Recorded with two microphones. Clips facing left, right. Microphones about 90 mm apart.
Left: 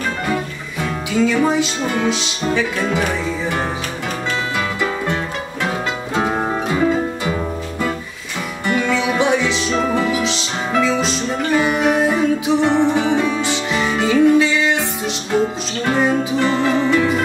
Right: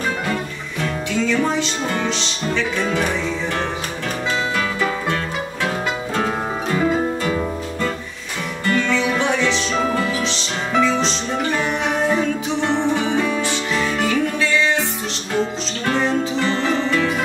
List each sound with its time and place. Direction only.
1.1 s music: 10° left (ahead or behind)
4.7 s music: 10° left (ahead or behind)
8.6 s music: 10° left (ahead or behind)
15.8 s music: 10° left (ahead or behind)